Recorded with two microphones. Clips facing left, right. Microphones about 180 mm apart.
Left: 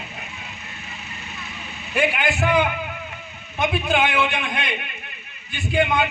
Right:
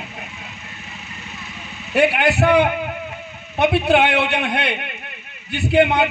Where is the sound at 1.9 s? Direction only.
65° right (ahead or behind).